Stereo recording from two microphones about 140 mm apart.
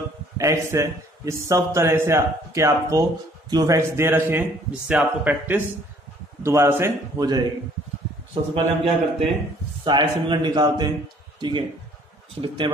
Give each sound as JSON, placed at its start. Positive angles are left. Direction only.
{"t": 0.4, "sound": "a man's voice", "side_deg": -20}
{"t": 8.5, "sound": "a man's voice", "side_deg": -40}